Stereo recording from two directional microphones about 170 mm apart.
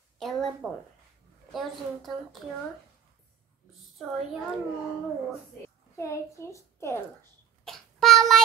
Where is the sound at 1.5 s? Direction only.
Centre (ahead or behind).